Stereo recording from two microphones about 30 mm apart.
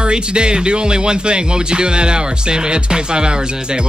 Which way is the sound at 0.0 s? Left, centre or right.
Right.